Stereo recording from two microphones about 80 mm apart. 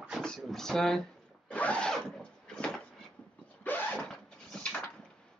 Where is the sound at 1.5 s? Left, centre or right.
Centre.